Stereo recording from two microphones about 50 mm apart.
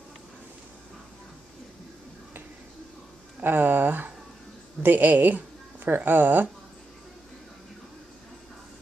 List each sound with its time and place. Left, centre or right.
3.3 s speech: right